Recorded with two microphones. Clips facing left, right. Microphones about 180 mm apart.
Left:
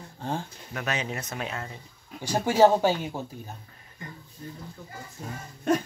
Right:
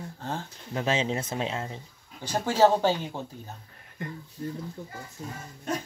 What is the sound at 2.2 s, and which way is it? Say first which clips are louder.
Speech: left 2 dB; 15° left (ahead or behind).